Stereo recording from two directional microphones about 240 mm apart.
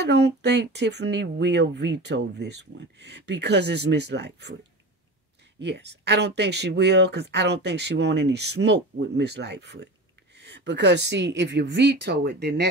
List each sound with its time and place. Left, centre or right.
0.0 s speech: right
5.6 s speech: right